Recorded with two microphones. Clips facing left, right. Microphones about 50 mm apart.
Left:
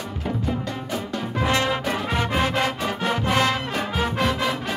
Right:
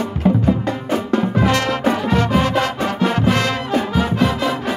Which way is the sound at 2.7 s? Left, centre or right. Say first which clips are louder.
Right 5 dB; right.